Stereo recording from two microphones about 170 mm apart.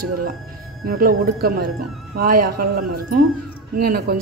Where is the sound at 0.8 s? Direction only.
55° right (ahead or behind).